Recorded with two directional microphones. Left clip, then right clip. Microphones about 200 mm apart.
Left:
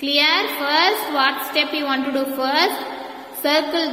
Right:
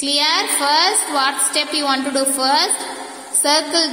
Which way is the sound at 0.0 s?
15° right (ahead or behind).